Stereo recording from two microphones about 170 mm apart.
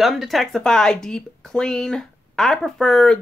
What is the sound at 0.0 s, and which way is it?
Speech, centre (ahead or behind).